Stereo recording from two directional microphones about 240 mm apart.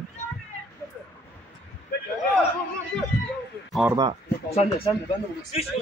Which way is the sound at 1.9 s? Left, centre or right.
Left.